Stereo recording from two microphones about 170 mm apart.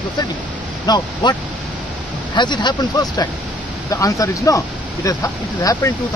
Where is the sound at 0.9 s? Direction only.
25° left (ahead or behind).